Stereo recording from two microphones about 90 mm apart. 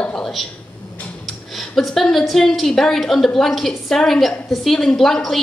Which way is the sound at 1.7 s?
5° left (ahead or behind).